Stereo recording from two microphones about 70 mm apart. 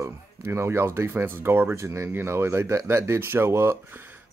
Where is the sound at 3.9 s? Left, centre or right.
Right.